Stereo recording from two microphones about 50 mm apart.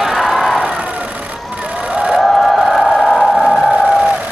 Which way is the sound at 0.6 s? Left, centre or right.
Centre.